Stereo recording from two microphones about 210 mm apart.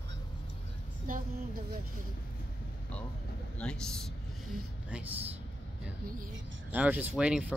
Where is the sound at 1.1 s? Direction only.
40° right (ahead or behind).